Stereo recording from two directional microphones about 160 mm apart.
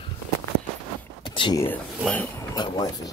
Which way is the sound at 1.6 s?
10° left (ahead or behind).